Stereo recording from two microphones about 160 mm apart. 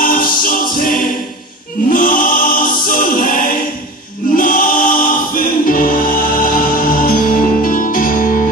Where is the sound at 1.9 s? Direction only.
60° left (ahead or behind).